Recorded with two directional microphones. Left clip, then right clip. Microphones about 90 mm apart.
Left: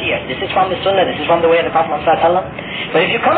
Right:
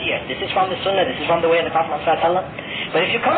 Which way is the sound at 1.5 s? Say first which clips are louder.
Left 5 dB; 35° right (ahead or behind).